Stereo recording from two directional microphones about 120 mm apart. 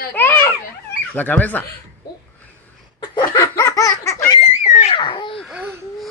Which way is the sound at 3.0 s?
35° left (ahead or behind).